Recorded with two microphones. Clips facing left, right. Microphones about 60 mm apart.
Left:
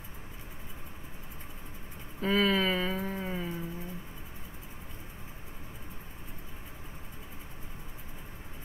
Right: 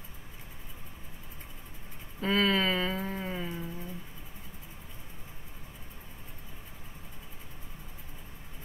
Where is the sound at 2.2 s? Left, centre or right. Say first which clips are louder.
Even; centre.